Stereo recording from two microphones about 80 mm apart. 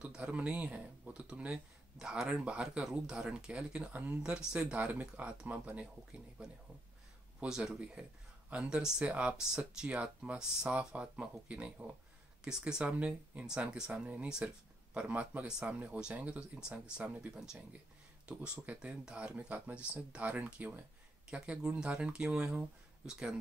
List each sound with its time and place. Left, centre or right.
0.0 s speech: centre
4.2 s speech: centre